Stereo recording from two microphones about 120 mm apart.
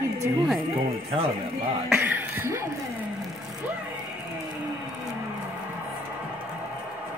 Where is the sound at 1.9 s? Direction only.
15° right (ahead or behind).